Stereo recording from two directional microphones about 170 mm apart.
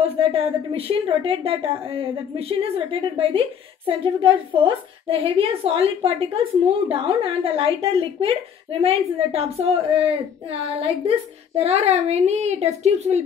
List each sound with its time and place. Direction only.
0.0 s a woman's voice: 35° right (ahead or behind)
11.1 s a woman's voice: 35° right (ahead or behind)